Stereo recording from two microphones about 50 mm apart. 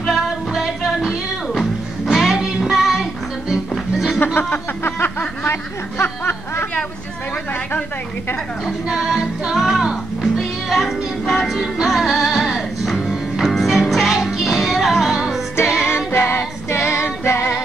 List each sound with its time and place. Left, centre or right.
0.0 s music: centre
4.2 s a sound: left
6.0 s snicker: left
8.8 s music: centre
15.8 s music: left
16.3 s female singing: left
17.3 s music: left